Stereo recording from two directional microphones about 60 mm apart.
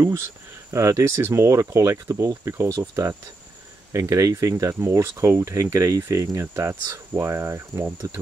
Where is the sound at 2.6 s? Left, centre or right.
Right.